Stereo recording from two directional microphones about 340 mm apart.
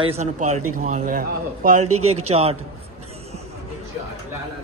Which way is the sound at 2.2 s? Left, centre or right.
Centre.